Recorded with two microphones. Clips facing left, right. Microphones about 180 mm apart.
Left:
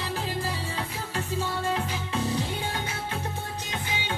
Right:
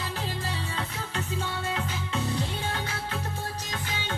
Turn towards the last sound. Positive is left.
turn(degrees=15)  # may be behind; listen again after turning